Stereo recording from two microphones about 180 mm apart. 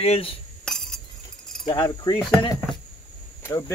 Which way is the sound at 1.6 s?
25° left (ahead or behind).